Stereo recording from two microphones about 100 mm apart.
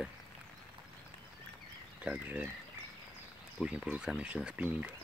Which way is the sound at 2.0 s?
15° right (ahead or behind).